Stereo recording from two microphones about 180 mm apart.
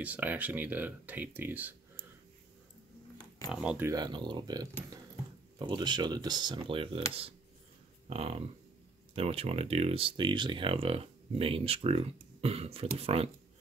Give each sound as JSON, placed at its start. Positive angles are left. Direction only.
{"t": 0.0, "sound": "speech", "side_deg": -10}
{"t": 3.4, "sound": "speech", "side_deg": -5}
{"t": 8.1, "sound": "speech", "side_deg": -35}